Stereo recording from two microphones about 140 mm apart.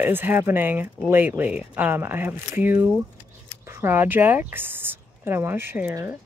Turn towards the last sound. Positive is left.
turn(degrees=-15)  # may be behind; listen again after turning